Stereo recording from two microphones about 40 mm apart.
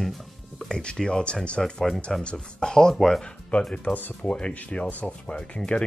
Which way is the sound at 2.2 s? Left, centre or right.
Left.